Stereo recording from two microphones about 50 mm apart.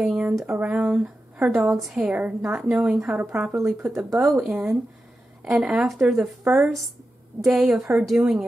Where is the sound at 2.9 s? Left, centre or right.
Right.